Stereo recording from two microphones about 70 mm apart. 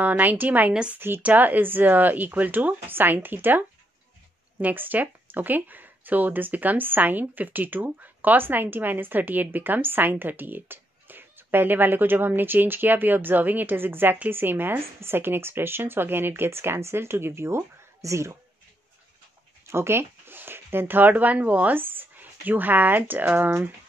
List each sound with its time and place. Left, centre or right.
0.0 s speech: right
19.6 s speech: right